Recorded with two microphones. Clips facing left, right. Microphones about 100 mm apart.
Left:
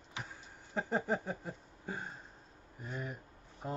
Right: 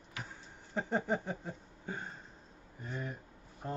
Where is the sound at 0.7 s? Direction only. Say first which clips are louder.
Right 1 dB; centre (ahead or behind).